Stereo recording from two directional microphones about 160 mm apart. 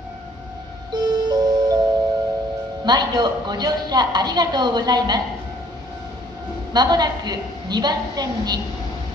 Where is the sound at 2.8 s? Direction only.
25° right (ahead or behind).